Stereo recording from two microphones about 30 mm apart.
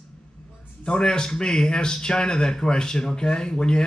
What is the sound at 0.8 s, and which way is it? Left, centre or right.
A woman's voice, left.